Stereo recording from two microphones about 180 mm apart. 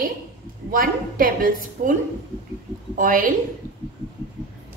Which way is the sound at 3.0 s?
50° right (ahead or behind).